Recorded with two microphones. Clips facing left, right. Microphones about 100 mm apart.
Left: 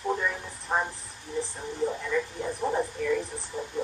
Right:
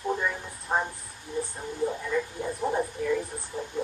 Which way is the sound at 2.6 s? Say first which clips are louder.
Even; centre (ahead or behind).